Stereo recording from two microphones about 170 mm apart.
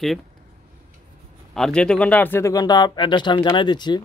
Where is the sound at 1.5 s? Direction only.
5° left (ahead or behind).